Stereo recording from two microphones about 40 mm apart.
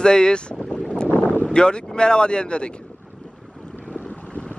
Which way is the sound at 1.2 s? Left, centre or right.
Left.